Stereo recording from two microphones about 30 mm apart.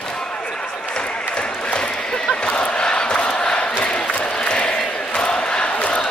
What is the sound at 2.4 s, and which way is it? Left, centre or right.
Crowd, left.